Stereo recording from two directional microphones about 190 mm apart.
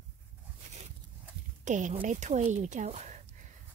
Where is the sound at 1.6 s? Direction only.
40° right (ahead or behind).